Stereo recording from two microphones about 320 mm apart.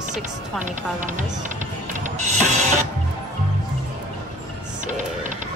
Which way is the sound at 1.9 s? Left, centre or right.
Right.